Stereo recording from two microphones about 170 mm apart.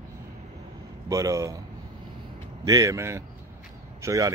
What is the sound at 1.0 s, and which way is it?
Speech, 20° right (ahead or behind).